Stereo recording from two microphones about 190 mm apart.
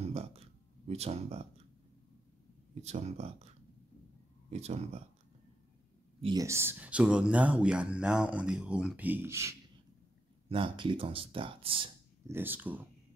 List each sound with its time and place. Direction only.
0.0 s a sound: 30° right (ahead or behind)
0.8 s speech: 35° right (ahead or behind)
2.7 s speech: 35° right (ahead or behind)
4.5 s speech: 35° right (ahead or behind)
6.2 s speech: 15° right (ahead or behind)
10.5 s speech: 25° right (ahead or behind)
12.3 s speech: 10° right (ahead or behind)